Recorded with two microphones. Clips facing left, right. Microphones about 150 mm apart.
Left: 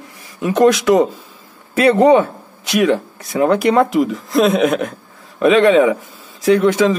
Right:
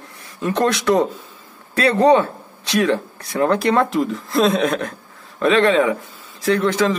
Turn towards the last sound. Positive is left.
turn(degrees=15)  # may be behind; listen again after turning